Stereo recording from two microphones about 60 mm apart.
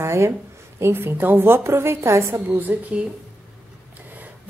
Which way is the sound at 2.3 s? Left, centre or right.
Right.